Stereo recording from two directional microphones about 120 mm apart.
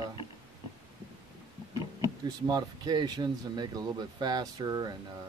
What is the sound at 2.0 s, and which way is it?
Speech, 35° right (ahead or behind).